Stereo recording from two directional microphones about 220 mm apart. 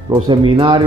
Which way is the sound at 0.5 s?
25° right (ahead or behind).